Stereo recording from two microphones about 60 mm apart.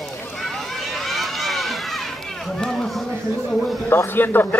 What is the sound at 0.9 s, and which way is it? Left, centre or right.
Run, centre.